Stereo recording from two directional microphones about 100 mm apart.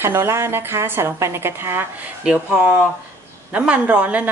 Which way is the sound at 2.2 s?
10° right (ahead or behind).